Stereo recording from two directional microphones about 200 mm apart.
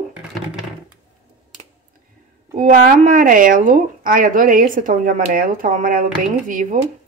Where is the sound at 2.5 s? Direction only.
40° right (ahead or behind).